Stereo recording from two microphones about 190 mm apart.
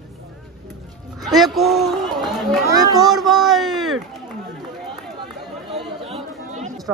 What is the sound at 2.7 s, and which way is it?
Speech, 20° right (ahead or behind).